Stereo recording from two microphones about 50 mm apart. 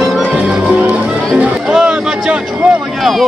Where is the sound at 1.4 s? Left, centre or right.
Centre.